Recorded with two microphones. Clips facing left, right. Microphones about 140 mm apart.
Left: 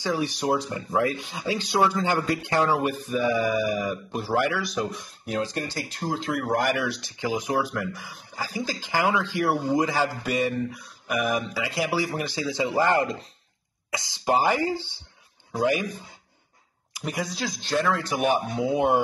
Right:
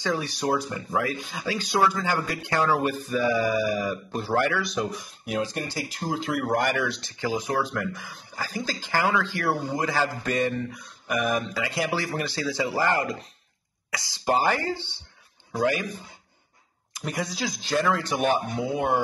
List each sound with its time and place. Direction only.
0.0 s speech: 15° left (ahead or behind)
5.2 s speech: 10° right (ahead or behind); by 15.9 s 15° left (ahead or behind)
16.9 s speech: centre (ahead or behind)
18.2 s speech: 15° left (ahead or behind)